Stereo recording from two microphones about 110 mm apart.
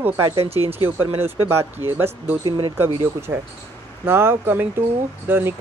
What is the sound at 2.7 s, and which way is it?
Speech, 20° right (ahead or behind).